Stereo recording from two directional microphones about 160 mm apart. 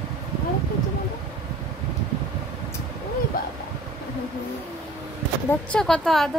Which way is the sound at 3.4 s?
65° left (ahead or behind).